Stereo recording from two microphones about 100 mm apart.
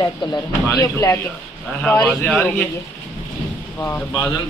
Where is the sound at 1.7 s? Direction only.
20° left (ahead or behind).